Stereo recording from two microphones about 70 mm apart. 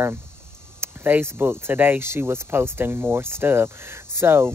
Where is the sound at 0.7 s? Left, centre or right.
Right.